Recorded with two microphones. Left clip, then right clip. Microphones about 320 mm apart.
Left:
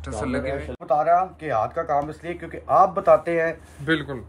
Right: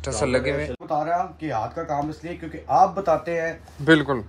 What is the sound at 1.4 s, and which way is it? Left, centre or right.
Speech, centre.